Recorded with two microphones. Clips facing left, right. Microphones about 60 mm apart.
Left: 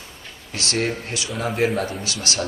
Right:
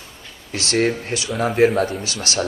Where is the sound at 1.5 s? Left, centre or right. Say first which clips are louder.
Right 6 dB; centre.